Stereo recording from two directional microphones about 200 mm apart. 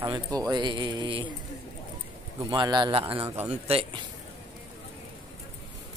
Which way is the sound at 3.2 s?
10° right (ahead or behind).